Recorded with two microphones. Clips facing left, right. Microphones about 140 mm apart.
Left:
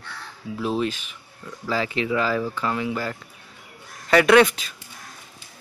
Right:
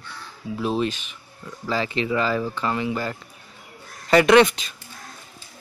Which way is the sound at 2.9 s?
10° right (ahead or behind).